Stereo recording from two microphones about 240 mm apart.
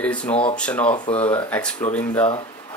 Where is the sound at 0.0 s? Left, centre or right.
Centre.